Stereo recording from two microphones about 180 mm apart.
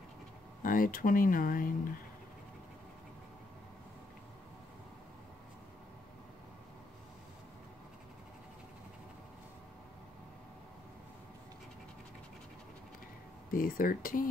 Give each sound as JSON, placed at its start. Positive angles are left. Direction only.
{"t": 0.6, "sound": "speech", "side_deg": 50}
{"t": 13.5, "sound": "speech", "side_deg": 50}